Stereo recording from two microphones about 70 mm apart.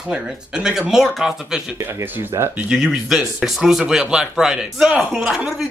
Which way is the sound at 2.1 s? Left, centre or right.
Right.